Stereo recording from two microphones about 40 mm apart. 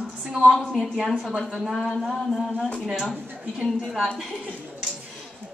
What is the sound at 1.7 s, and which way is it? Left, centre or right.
Speech, centre.